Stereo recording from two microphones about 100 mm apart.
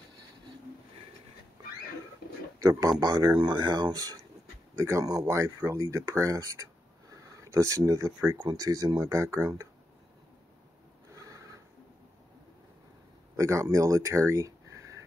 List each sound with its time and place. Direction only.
2.6 s speech: 35° right (ahead or behind)
8.2 s speech: 25° right (ahead or behind)
8.5 s speech: 35° right (ahead or behind)
11.1 s a sound: 35° right (ahead or behind)
13.4 s speech: 30° right (ahead or behind)